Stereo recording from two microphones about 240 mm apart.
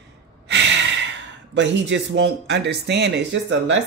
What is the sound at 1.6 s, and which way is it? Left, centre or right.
Speech, right.